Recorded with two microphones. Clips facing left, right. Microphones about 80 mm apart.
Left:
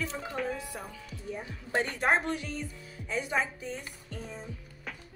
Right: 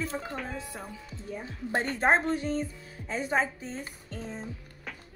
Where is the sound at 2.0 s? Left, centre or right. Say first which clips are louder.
Right 5 dB; right.